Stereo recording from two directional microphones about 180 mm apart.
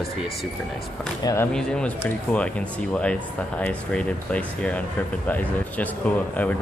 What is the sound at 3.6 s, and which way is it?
A man's voice, 5° left (ahead or behind).